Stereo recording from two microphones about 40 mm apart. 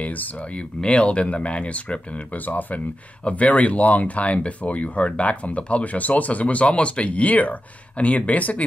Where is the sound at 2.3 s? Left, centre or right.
Left.